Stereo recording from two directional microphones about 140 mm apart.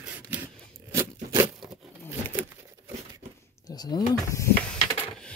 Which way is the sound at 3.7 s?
30° left (ahead or behind).